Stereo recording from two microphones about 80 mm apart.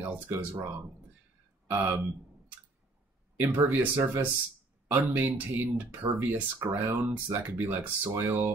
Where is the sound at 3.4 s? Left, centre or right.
Right.